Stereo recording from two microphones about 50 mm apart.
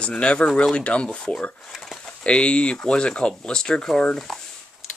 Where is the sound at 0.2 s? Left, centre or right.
Left.